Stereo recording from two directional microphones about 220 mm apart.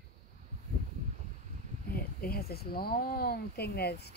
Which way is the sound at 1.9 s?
45° left (ahead or behind).